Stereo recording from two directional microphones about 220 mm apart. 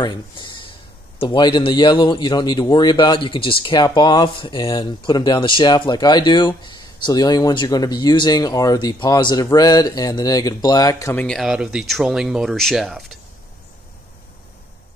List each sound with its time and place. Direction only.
0.0 s a sound: 20° left (ahead or behind)
1.2 s speech: 20° left (ahead or behind)
11.2 s speech: centre (ahead or behind)